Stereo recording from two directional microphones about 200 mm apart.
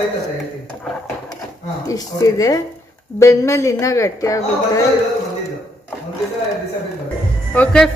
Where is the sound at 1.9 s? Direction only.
15° left (ahead or behind).